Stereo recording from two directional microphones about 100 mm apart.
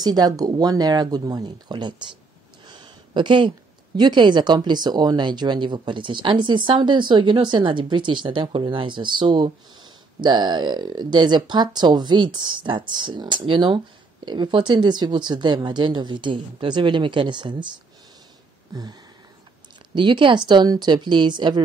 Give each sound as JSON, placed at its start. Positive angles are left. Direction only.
{"t": 0.0, "sound": "a woman's voice", "side_deg": -40}
{"t": 18.7, "sound": "a sound", "side_deg": -40}
{"t": 19.9, "sound": "a woman's voice", "side_deg": -50}